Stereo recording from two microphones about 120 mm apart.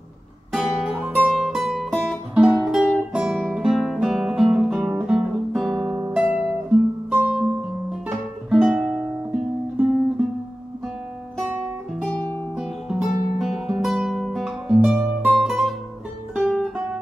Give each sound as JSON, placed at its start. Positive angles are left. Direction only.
{"t": 0.5, "sound": "music", "side_deg": 0}
{"t": 3.1, "sound": "guitar", "side_deg": -10}
{"t": 5.5, "sound": "guitar", "side_deg": 0}
{"t": 8.5, "sound": "music", "side_deg": -5}
{"t": 12.0, "sound": "guitar", "side_deg": 10}
{"t": 12.5, "sound": "guitar", "side_deg": -10}
{"t": 15.3, "sound": "music", "side_deg": 0}
{"t": 16.7, "sound": "guitar", "side_deg": -15}